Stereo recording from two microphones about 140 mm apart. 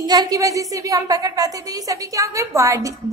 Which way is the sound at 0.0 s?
30° right (ahead or behind).